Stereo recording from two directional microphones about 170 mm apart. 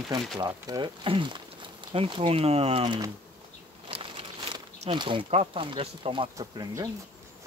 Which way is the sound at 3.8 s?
30° right (ahead or behind).